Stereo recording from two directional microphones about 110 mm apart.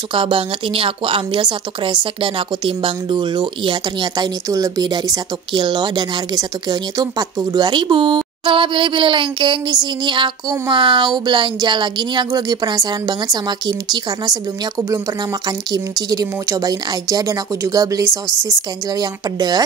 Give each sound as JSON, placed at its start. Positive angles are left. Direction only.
{"t": 0.1, "sound": "speech", "side_deg": -55}
{"t": 15.7, "sound": "speech", "side_deg": -35}